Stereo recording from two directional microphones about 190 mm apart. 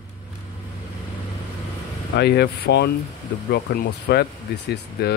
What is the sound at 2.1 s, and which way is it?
Speech, 60° left (ahead or behind).